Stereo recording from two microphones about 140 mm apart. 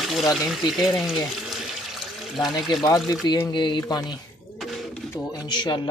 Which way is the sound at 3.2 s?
30° left (ahead or behind).